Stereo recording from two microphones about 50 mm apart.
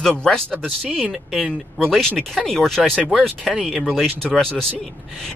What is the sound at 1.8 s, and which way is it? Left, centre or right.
Speech, centre.